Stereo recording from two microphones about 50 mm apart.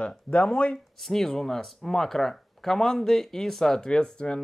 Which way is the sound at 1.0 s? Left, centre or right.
Centre.